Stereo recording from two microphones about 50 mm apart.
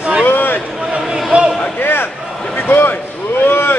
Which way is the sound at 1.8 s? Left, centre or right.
Left.